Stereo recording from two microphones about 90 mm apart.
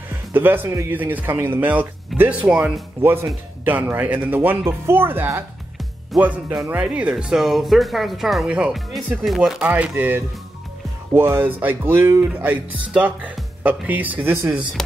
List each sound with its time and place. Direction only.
0.1 s music: 25° right (ahead or behind)
0.8 s speech: 20° right (ahead or behind); by 8.5 s centre (ahead or behind)
8.5 s speech: 15° right (ahead or behind)
9.2 s speech: 5° right (ahead or behind)
9.7 s speech: 20° right (ahead or behind)
12.9 s speech: 15° right (ahead or behind)